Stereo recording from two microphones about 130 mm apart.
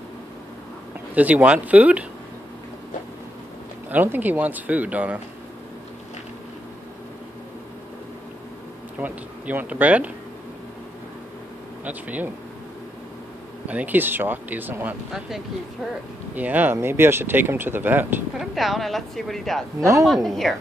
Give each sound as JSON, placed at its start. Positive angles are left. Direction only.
{"t": 1.1, "sound": "speech", "side_deg": -10}
{"t": 3.9, "sound": "speech", "side_deg": -15}
{"t": 9.0, "sound": "speech", "side_deg": -15}
{"t": 11.8, "sound": "speech", "side_deg": -10}
{"t": 13.7, "sound": "speech", "side_deg": -10}
{"t": 18.4, "sound": "a woman's voice", "side_deg": 0}
{"t": 19.8, "sound": "a woman's voice", "side_deg": -20}
{"t": 20.2, "sound": "a woman's voice", "side_deg": 0}